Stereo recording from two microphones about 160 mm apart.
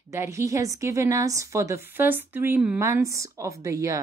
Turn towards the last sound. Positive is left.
turn(degrees=-20)  # may be behind; listen again after turning